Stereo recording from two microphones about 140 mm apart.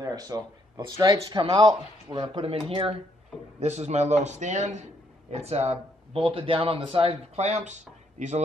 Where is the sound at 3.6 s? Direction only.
50° right (ahead or behind).